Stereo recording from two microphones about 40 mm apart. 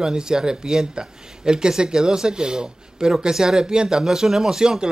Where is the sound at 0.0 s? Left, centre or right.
Centre.